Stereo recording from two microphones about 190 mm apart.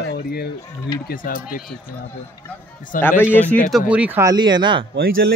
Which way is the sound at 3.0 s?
10° left (ahead or behind).